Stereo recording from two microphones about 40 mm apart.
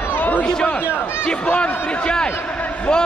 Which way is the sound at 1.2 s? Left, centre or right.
Left.